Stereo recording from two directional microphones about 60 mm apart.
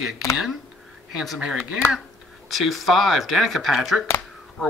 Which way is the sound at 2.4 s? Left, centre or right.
Centre.